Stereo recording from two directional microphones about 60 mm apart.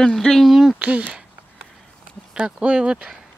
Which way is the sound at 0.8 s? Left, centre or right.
Centre.